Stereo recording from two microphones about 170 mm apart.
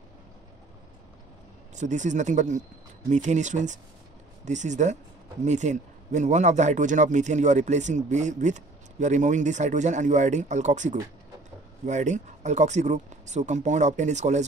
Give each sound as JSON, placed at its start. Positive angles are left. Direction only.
{"t": 1.8, "sound": "speech", "side_deg": -45}